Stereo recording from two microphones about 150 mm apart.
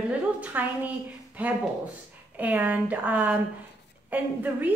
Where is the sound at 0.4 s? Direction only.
10° right (ahead or behind).